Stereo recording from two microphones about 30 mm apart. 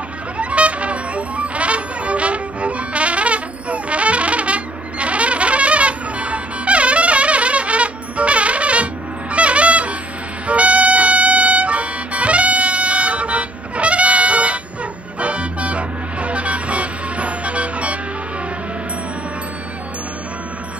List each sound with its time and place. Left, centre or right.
0.4 s music: right